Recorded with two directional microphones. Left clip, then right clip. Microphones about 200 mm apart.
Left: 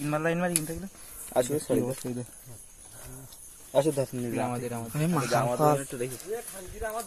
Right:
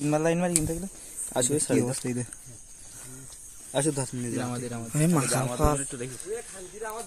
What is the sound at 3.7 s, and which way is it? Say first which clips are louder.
Speech: left 3 dB; 55° right (ahead or behind).